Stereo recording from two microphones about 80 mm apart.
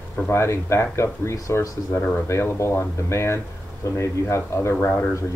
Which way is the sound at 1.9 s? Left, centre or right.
Centre.